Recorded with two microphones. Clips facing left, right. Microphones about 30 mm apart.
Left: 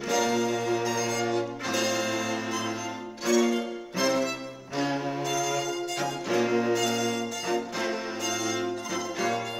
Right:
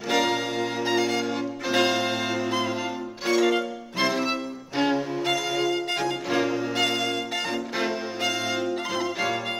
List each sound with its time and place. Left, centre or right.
0.1 s music: right